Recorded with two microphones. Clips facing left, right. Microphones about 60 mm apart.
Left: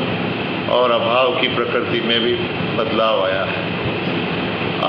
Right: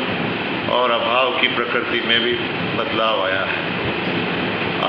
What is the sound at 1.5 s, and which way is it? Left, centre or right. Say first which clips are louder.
Speech: left 2 dB; right.